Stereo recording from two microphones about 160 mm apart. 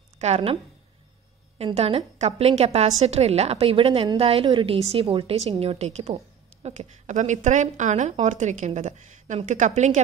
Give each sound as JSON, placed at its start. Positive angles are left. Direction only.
{"t": 0.2, "sound": "a woman's voice", "side_deg": -40}
{"t": 1.8, "sound": "a woman's voice", "side_deg": -40}